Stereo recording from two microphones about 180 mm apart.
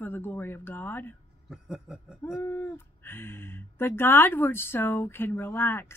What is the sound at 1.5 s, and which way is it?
Snicker, 5° right (ahead or behind).